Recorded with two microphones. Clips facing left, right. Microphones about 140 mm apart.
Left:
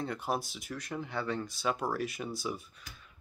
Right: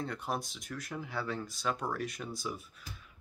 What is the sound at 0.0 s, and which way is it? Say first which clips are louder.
Speech: left 2 dB; centre (ahead or behind).